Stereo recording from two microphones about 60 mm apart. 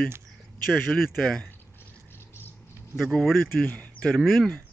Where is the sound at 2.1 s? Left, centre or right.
Left.